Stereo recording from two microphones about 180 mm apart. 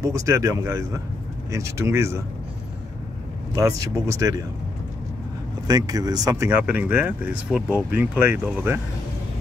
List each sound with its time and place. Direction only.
0.0 s speech: 15° right (ahead or behind)
3.5 s speech: 15° right (ahead or behind)
5.7 s speech: 20° right (ahead or behind)